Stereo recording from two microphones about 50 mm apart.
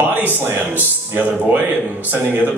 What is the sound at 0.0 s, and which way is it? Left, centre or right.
A man's voice, right.